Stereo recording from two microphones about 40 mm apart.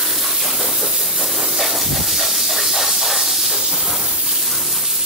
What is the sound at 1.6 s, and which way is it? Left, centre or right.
Hiss, centre.